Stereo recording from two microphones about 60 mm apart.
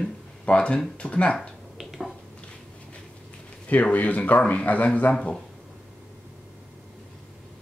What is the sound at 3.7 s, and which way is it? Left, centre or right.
Speech, left.